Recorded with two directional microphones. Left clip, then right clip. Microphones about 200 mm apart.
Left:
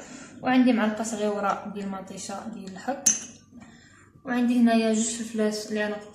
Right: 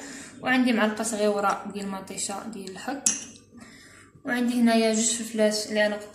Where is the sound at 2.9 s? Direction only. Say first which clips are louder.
Left 3 dB; 15° right (ahead or behind).